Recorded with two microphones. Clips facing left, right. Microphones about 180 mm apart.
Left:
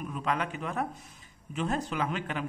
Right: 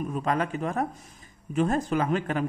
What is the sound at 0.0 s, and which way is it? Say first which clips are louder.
Speech: right 5 dB; 40° right (ahead or behind).